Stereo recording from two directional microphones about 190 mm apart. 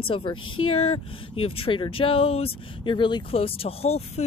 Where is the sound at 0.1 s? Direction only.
30° left (ahead or behind).